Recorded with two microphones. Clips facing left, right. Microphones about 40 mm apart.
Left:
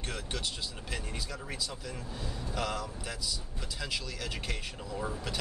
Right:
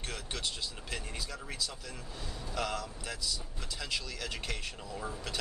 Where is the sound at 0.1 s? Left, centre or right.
Centre.